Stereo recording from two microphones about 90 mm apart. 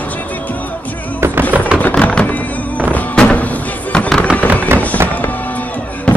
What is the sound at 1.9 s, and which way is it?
Music, 15° left (ahead or behind).